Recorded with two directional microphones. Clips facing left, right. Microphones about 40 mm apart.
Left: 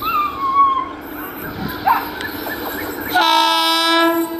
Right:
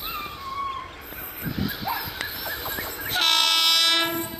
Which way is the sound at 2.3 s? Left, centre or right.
Centre.